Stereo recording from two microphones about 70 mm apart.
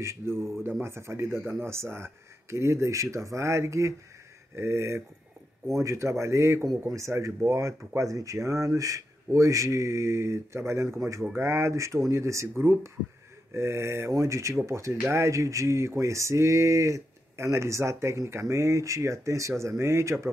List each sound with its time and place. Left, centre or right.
0.0 s speech: right